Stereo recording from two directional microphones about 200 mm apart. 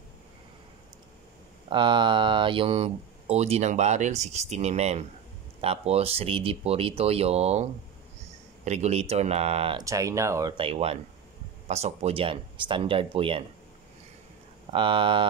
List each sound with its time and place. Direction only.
1.7 s speech: 25° right (ahead or behind)
8.6 s speech: 35° right (ahead or behind)
9.8 s speech: 15° right (ahead or behind)
10.6 s speech: 30° right (ahead or behind)
14.7 s speech: 25° right (ahead or behind)